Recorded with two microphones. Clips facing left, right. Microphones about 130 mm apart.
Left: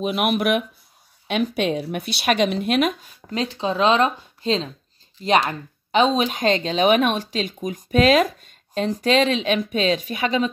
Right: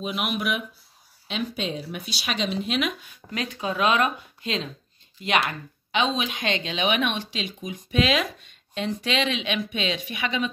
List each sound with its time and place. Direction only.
0.0 s speech: 55° left (ahead or behind)
3.0 s speech: 30° left (ahead or behind)